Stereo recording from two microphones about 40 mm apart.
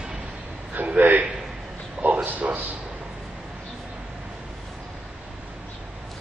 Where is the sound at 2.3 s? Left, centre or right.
Right.